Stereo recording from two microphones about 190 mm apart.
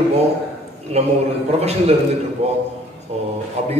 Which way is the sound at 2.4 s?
35° right (ahead or behind).